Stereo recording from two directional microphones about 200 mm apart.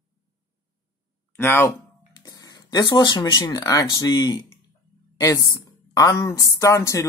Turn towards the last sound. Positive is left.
turn(degrees=15)  # may be behind; listen again after turning